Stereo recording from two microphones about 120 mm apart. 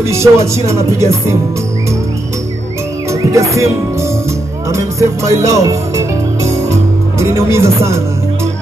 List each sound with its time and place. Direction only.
0.0 s music: 25° right (ahead or behind)
3.1 s music: 25° right (ahead or behind)